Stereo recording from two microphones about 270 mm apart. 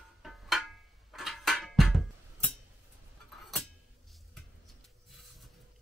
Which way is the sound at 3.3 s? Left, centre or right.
Centre.